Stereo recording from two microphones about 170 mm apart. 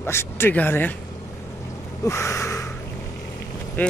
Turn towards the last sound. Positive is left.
turn(degrees=10)  # may be behind; listen again after turning